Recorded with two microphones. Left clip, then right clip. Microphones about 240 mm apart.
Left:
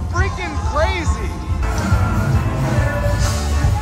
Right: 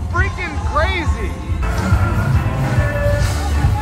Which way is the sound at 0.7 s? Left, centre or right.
Centre.